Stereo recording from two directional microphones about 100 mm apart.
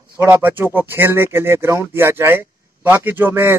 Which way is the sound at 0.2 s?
20° right (ahead or behind).